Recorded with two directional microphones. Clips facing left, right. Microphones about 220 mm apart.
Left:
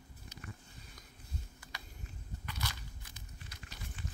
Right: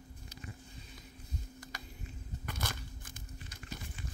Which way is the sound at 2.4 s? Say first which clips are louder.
Right 3 dB; 50° right (ahead or behind).